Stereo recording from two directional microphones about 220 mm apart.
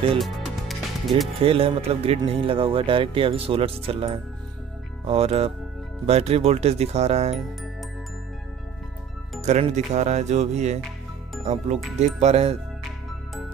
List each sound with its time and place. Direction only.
0.2 s music: centre (ahead or behind)
1.4 s speech: 25° right (ahead or behind)
9.4 s speech: 30° right (ahead or behind)